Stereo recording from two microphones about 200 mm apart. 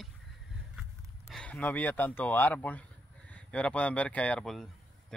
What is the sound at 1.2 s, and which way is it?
Speech, 5° left (ahead or behind).